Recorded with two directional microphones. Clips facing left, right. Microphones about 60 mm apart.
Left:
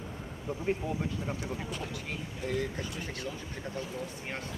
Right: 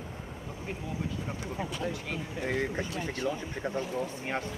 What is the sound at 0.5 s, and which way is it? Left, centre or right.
Speech, left.